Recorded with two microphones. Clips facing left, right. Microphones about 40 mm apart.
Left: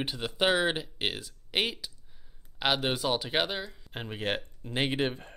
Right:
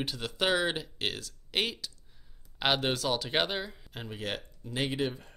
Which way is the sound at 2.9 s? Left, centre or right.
Centre.